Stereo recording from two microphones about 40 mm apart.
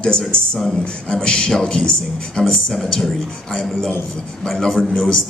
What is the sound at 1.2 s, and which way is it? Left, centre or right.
A man's voice, left.